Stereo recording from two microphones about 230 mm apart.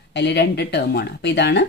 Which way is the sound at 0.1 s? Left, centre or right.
Left.